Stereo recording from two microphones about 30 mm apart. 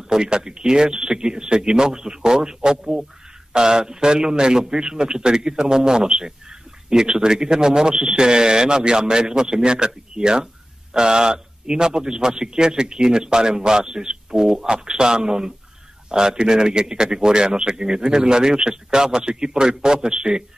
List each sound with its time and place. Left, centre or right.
0.0 s speech: right